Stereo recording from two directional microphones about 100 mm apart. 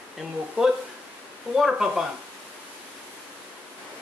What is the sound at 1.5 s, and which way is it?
Speech, 5° right (ahead or behind).